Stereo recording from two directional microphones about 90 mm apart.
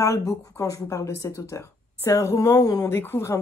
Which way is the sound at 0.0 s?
35° left (ahead or behind).